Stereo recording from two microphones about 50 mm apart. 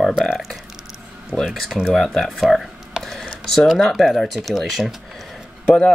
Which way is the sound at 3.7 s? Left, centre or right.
Centre.